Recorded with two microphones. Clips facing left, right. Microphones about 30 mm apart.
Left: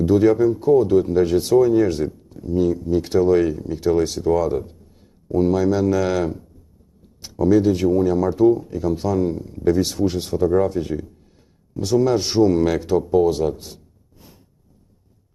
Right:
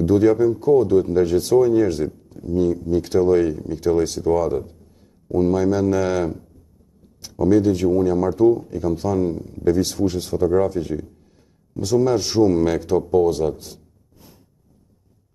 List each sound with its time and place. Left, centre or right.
0.0 s speech: left
7.2 s a sound: left
7.4 s speech: left